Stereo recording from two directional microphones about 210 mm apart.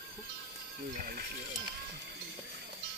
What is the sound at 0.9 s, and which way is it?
Speech, 40° right (ahead or behind).